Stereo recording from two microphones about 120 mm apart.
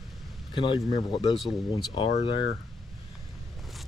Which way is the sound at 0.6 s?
45° left (ahead or behind).